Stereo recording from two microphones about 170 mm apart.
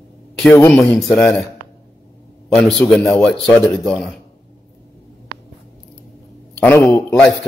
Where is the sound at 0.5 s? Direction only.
15° left (ahead or behind).